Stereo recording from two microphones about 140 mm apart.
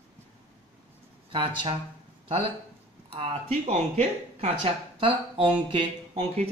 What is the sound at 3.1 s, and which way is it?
Speech, 45° right (ahead or behind).